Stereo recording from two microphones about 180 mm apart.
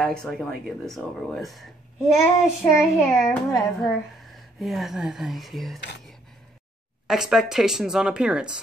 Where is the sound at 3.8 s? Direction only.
Centre (ahead or behind).